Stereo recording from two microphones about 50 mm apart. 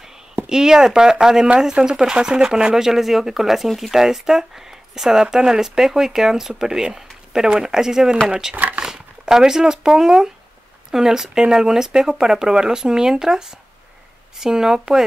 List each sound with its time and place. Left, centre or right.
0.5 s speech: centre
8.5 s a sound: right
8.8 s speech: centre